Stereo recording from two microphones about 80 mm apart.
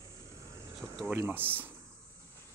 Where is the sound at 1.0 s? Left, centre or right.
Right.